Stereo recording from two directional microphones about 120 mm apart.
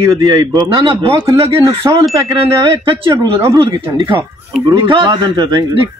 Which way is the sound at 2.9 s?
45° right (ahead or behind).